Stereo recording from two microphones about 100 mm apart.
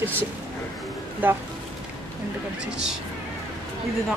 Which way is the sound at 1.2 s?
20° right (ahead or behind).